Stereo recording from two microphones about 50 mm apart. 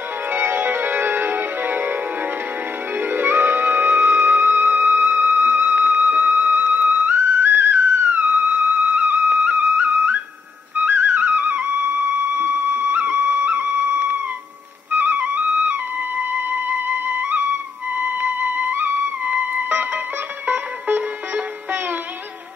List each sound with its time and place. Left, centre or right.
0.3 s music: right
3.0 s music: right
11.6 s music: right